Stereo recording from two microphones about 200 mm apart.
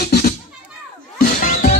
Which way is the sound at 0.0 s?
50° left (ahead or behind).